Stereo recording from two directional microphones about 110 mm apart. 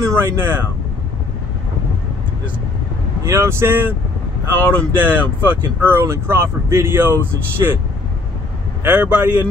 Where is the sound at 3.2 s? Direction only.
25° right (ahead or behind).